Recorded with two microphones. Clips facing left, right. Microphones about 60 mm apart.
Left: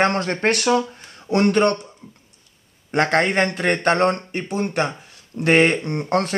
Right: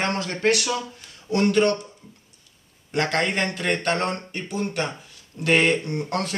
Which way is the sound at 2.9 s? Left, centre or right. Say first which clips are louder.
Left 5 dB; left.